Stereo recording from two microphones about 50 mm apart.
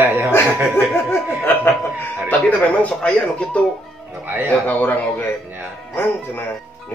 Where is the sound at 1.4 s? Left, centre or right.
Left.